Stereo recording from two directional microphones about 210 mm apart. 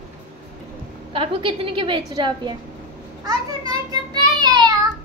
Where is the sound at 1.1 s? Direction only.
25° right (ahead or behind).